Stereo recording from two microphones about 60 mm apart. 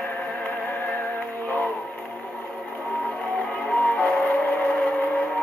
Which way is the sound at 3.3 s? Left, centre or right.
Left.